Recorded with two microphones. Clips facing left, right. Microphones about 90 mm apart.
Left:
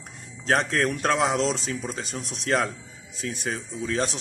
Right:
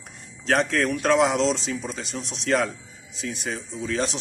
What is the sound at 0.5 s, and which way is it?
A man's voice, 35° left (ahead or behind).